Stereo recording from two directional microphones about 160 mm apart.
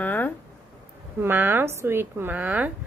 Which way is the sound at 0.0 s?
10° left (ahead or behind).